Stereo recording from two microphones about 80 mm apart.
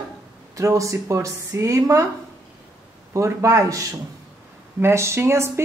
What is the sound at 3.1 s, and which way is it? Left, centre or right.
A woman's voice, right.